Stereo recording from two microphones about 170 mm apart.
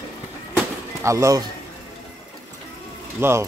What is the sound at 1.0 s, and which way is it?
Speech, 15° right (ahead or behind).